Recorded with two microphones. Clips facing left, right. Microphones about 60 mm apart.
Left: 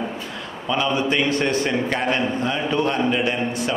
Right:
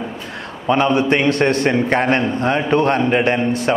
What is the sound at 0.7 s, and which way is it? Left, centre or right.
Speech, right.